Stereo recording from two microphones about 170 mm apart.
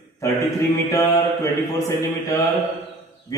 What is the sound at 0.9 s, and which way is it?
A man's voice, 15° left (ahead or behind).